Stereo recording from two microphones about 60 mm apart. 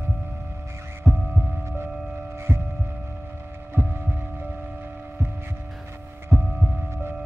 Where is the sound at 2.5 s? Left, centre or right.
Right.